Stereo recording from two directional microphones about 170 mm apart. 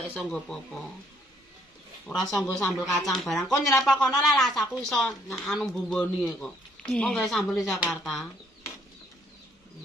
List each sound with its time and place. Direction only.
0.1 s speech: 5° left (ahead or behind)
2.4 s speech: centre (ahead or behind)